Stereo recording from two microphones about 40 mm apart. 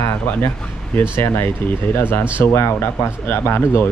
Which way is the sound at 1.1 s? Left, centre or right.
Left.